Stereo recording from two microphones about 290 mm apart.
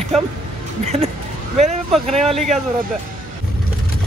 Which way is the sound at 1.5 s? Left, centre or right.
Right.